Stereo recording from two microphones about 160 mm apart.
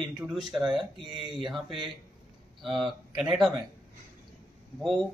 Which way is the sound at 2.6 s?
Centre (ahead or behind).